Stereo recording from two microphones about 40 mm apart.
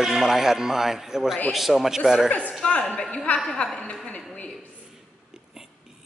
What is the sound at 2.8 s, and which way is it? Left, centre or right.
A woman's voice, centre.